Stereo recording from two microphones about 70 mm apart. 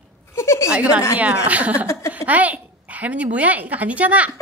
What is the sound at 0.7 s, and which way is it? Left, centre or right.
A woman's voice, centre.